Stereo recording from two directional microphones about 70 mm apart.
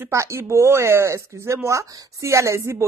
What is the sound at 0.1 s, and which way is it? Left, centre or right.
A woman's voice, right.